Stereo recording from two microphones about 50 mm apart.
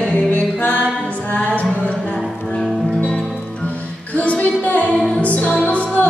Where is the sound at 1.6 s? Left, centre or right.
Left.